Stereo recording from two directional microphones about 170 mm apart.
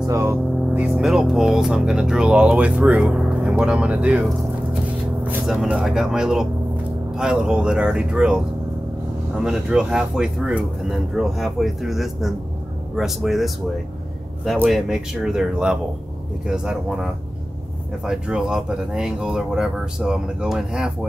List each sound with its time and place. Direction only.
0.0 s speech: 15° right (ahead or behind)
0.9 s speech: 5° right (ahead or behind)
9.4 s speech: 5° right (ahead or behind)